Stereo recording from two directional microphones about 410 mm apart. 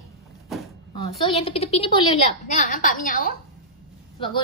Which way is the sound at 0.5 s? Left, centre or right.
Centre.